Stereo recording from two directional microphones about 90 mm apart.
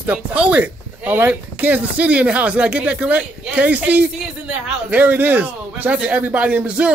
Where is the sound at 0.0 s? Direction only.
15° right (ahead or behind).